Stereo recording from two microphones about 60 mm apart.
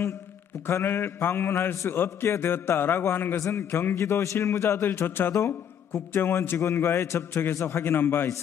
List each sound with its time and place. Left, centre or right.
0.7 s a man's voice: left
3.3 s a man's voice: left
6.6 s a man's voice: left